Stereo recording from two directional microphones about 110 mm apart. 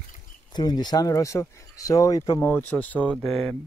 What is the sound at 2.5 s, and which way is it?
Speech, 15° left (ahead or behind).